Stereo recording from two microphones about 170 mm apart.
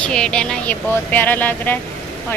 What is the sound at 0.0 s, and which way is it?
Speech, 5° left (ahead or behind).